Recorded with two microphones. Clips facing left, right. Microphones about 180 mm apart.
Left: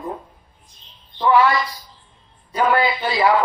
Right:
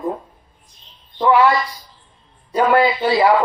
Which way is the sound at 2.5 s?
35° right (ahead or behind).